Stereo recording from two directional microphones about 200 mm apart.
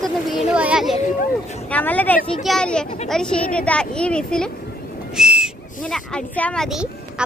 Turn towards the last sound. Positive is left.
turn(degrees=0)  # may be behind; listen again after turning